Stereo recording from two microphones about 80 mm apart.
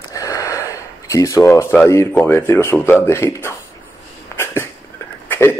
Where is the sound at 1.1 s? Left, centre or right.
Left.